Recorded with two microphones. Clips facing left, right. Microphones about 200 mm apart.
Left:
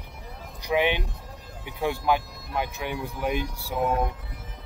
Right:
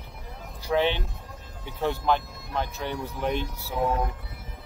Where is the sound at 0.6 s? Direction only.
15° left (ahead or behind).